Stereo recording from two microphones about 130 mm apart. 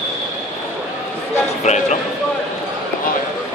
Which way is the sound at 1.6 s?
65° left (ahead or behind).